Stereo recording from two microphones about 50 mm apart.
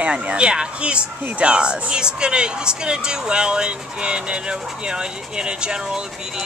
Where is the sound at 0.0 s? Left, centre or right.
Right.